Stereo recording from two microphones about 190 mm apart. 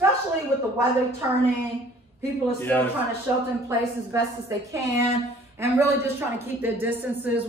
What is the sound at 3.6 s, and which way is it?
Speech, 15° right (ahead or behind).